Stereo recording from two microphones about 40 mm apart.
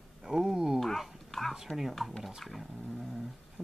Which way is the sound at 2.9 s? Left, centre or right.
Centre.